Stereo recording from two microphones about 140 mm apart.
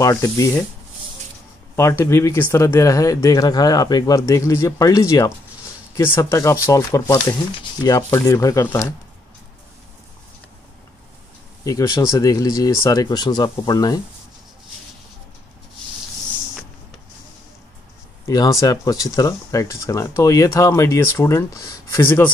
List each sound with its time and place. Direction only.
0.0 s speech: 25° left (ahead or behind)
1.8 s speech: 20° left (ahead or behind)
11.6 s speech: 25° left (ahead or behind)
18.2 s speech: 25° left (ahead or behind)